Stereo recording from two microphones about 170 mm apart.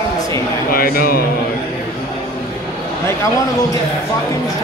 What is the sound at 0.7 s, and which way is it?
Speech, 60° left (ahead or behind).